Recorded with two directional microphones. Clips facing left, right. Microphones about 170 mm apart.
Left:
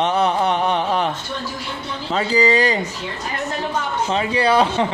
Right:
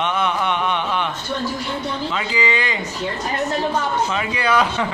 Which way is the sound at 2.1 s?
40° left (ahead or behind).